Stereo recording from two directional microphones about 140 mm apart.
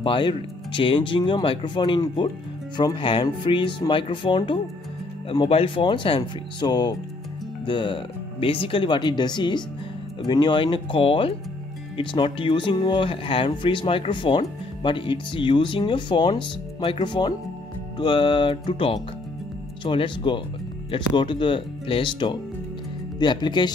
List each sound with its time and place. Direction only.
0.0 s speech: 35° left (ahead or behind)